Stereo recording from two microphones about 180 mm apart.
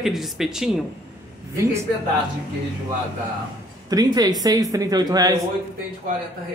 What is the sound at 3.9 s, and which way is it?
Speech, 20° right (ahead or behind).